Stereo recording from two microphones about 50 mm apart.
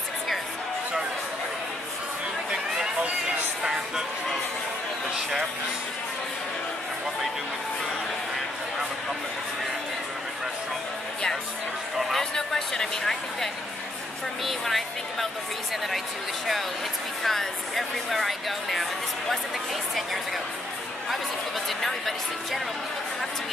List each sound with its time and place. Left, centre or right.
2.5 s a sound: centre
12.1 s speech: centre
17.2 s speech: centre
21.6 s speech: centre